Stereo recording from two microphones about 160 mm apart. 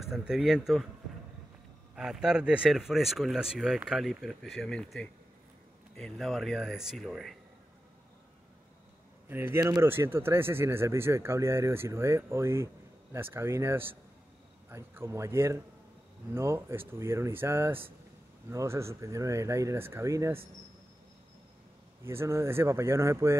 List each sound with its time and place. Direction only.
0.0 s speech: 5° right (ahead or behind)
2.0 s speech: 5° right (ahead or behind)
9.3 s speech: 15° right (ahead or behind)
22.0 s speech: 15° right (ahead or behind)